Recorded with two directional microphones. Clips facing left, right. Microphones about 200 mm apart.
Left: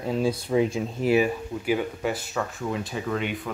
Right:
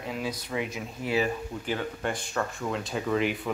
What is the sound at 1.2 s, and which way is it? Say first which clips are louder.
Speech: left 4 dB; 10° left (ahead or behind).